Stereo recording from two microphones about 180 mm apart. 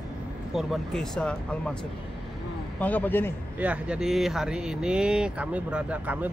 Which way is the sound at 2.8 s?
10° left (ahead or behind).